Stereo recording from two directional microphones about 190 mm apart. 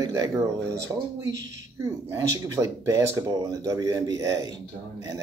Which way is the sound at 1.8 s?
15° right (ahead or behind).